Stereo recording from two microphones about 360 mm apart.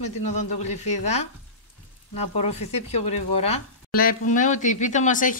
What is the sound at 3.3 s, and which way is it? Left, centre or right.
Speech, left.